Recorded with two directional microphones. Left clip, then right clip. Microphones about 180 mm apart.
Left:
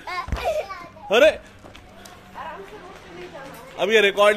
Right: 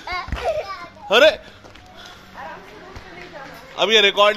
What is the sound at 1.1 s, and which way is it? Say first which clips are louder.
Speech: right 2 dB; 5° left (ahead or behind).